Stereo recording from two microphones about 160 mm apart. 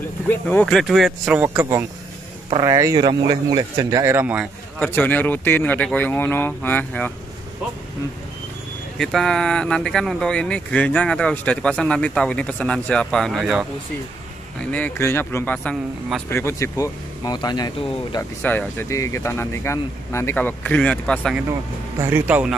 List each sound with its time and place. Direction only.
0.3 s speech: 10° left (ahead or behind)
0.7 s speech: centre (ahead or behind)
1.4 s speech: 15° right (ahead or behind)
4.7 s speech: 10° left (ahead or behind)
8.9 s speech: 5° left (ahead or behind)
14.7 s speech: 10° left (ahead or behind)
18.4 s speech: 10° left (ahead or behind)
22.0 s speech: 10° right (ahead or behind)